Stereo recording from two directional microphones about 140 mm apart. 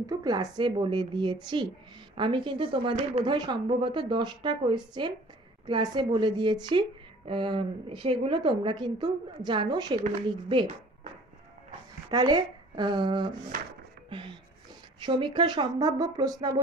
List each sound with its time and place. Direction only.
0.0 s a woman's voice: 25° right (ahead or behind)
12.1 s a woman's voice: 30° right (ahead or behind)